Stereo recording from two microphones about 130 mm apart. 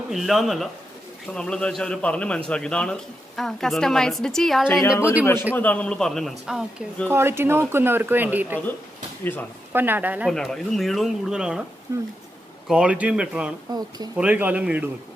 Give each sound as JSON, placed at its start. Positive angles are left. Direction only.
{"t": 0.1, "sound": "a man's voice", "side_deg": 0}
{"t": 4.9, "sound": "speech", "side_deg": -10}
{"t": 5.2, "sound": "a man's voice", "side_deg": 20}
{"t": 7.1, "sound": "speech", "side_deg": -20}
{"t": 9.7, "sound": "speech", "side_deg": -15}
{"t": 10.2, "sound": "a man's voice", "side_deg": 5}
{"t": 11.9, "sound": "speech", "side_deg": -20}
{"t": 12.6, "sound": "speech", "side_deg": -10}